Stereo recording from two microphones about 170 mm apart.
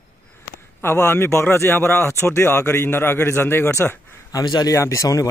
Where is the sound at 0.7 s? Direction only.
15° left (ahead or behind).